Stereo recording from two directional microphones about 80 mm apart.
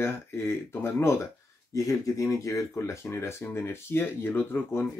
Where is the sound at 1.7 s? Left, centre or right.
Left.